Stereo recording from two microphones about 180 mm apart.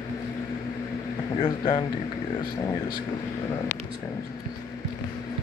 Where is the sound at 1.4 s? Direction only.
25° left (ahead or behind).